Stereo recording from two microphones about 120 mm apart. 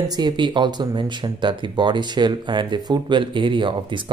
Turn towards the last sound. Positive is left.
turn(degrees=-45)  # may be behind; listen again after turning